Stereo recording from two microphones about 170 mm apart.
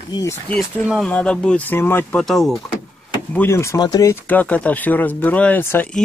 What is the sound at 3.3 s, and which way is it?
Speech, 15° left (ahead or behind).